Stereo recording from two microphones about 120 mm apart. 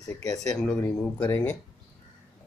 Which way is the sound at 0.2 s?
30° left (ahead or behind).